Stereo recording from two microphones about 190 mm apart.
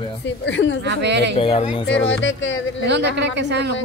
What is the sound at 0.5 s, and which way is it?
Speech, 70° left (ahead or behind).